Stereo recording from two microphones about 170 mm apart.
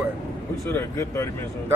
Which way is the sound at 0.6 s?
15° left (ahead or behind).